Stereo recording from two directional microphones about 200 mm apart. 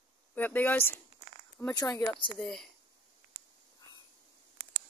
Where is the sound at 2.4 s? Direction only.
Centre (ahead or behind).